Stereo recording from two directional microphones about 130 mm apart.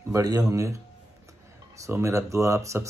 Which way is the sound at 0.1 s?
30° right (ahead or behind).